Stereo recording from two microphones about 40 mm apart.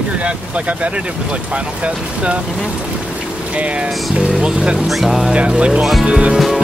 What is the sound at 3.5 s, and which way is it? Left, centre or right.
Speech, right.